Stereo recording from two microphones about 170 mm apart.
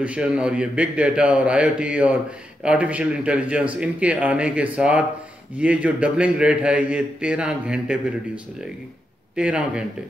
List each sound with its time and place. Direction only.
0.0 s a man's voice: 5° right (ahead or behind)
9.3 s a man's voice: 5° right (ahead or behind)